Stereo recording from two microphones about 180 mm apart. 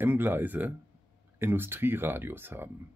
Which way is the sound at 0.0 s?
10° right (ahead or behind).